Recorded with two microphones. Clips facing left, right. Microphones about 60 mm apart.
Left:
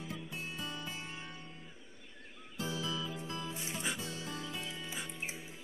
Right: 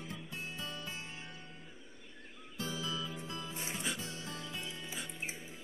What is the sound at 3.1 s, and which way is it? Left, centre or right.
Music, centre.